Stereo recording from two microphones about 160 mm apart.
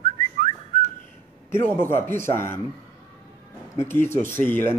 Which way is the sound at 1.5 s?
15° left (ahead or behind).